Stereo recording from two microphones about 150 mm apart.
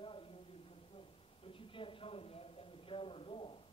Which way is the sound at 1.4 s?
35° left (ahead or behind).